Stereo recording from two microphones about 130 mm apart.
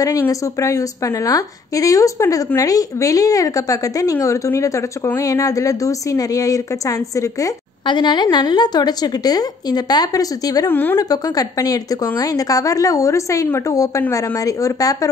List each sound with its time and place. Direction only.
0.0 s a woman's voice: 25° left (ahead or behind)
10.7 s a woman's voice: 15° left (ahead or behind)
11.0 s a woman's voice: 30° left (ahead or behind)